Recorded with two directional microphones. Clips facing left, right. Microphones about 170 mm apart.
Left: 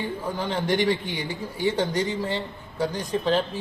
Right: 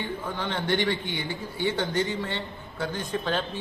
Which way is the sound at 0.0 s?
40° left (ahead or behind).